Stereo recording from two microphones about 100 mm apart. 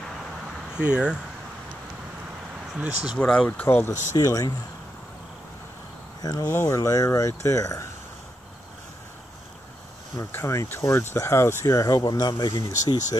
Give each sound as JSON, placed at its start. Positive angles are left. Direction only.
{"t": 0.7, "sound": "speech", "side_deg": -10}
{"t": 2.7, "sound": "speech", "side_deg": -10}
{"t": 3.2, "sound": "speech", "side_deg": 15}
{"t": 6.2, "sound": "speech", "side_deg": 35}
{"t": 10.3, "sound": "speech", "side_deg": 30}